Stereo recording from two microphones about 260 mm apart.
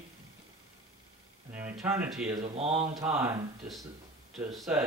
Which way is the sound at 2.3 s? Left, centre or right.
Right.